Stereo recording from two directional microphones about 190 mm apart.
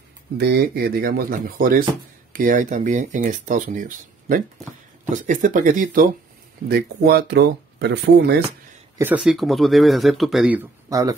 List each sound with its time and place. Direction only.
0.4 s speech: 60° right (ahead or behind)
6.7 s speech: 55° right (ahead or behind)
8.9 s speech: 10° right (ahead or behind)